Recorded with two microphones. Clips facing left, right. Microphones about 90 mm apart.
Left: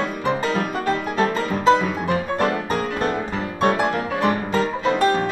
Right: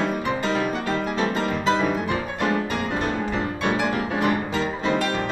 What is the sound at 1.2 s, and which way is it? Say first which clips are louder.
Music: left 3 dB; 40° left (ahead or behind).